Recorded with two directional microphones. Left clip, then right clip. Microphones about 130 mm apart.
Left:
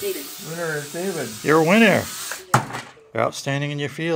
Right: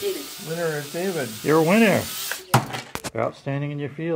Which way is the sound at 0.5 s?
20° right (ahead or behind).